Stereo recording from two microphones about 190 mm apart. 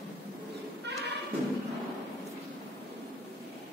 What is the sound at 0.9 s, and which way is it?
Music, 65° right (ahead or behind).